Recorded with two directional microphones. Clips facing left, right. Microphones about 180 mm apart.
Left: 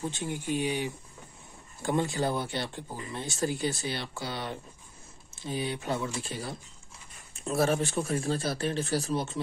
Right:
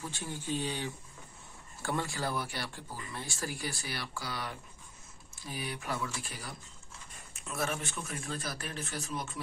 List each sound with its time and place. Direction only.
0.0 s speech: 20° left (ahead or behind)